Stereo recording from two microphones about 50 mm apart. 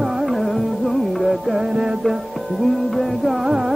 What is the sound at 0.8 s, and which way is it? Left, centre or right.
Music, centre.